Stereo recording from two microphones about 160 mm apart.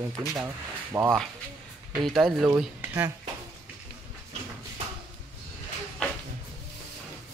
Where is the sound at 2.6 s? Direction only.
10° right (ahead or behind).